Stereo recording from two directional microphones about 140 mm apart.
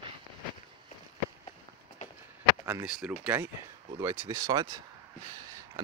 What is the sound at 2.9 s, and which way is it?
Speech, 5° right (ahead or behind).